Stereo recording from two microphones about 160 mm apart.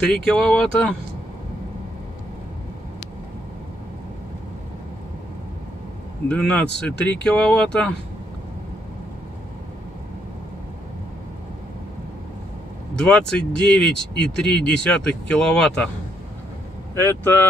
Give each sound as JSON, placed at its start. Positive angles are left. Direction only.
{"t": 0.0, "sound": "speech", "side_deg": 5}
{"t": 6.2, "sound": "speech", "side_deg": 5}
{"t": 12.9, "sound": "speech", "side_deg": 5}
{"t": 16.9, "sound": "speech", "side_deg": 15}